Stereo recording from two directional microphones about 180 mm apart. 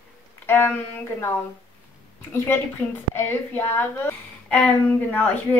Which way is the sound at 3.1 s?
10° left (ahead or behind).